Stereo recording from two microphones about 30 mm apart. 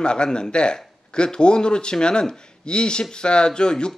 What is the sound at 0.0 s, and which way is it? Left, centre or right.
Speech, left.